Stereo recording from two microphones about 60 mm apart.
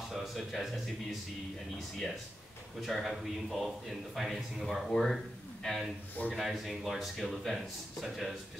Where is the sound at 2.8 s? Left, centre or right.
Centre.